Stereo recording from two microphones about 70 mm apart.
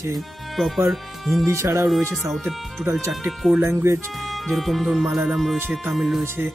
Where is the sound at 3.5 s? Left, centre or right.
Right.